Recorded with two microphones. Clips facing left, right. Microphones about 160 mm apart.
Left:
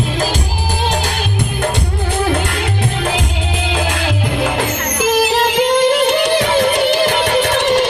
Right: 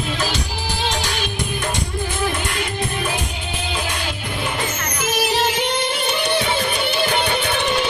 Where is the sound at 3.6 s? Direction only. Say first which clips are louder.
Left 7 dB; 90° left.